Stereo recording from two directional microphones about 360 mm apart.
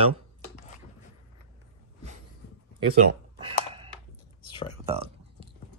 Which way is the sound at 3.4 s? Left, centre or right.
Centre.